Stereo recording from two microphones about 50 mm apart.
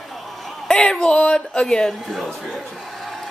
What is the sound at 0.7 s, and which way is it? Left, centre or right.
Speech, centre.